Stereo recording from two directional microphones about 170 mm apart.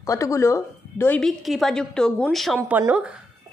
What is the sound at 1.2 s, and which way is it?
A woman's voice, centre (ahead or behind).